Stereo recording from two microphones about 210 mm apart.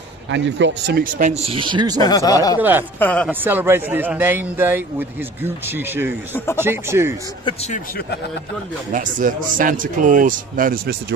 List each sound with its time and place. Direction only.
0.3 s speech: 60° right (ahead or behind); by 2.0 s 20° right (ahead or behind)
2.0 s speech: 20° left (ahead or behind)
3.0 s speech: 5° left (ahead or behind)
3.3 s a man's voice: 10° right (ahead or behind)
8.9 s speech: 40° right (ahead or behind)